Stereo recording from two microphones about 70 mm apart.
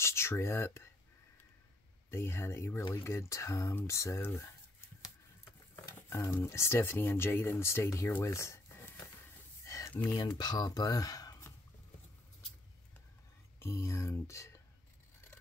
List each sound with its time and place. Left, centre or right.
0.0 s speech: left
2.0 s speech: left
6.0 s speech: left
10.1 s speech: left
13.6 s speech: left